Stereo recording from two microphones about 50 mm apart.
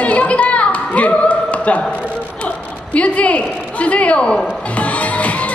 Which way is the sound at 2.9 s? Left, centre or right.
Left.